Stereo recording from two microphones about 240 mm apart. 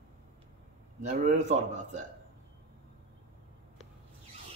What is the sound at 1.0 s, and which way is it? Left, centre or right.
Speech, right.